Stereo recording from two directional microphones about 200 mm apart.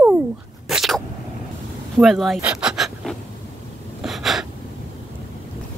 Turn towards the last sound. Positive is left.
turn(degrees=0)  # may be behind; listen again after turning